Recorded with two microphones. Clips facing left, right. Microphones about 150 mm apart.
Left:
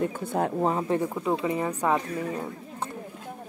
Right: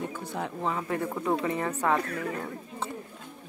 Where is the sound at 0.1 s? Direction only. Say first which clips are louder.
Left 7 dB; 50° left (ahead or behind).